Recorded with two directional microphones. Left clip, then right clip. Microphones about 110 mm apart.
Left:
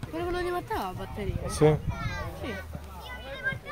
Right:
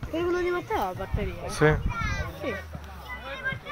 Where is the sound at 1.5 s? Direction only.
65° left (ahead or behind).